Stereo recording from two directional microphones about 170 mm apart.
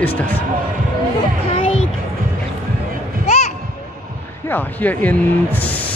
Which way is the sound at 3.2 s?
40° left (ahead or behind).